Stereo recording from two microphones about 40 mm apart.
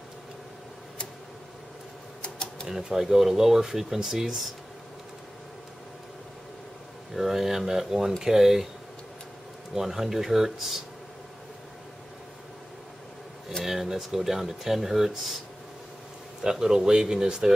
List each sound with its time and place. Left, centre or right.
2.2 s typewriter: left
2.7 s speech: centre
7.2 s speech: centre
9.8 s speech: centre
13.7 s speech: centre
16.4 s speech: centre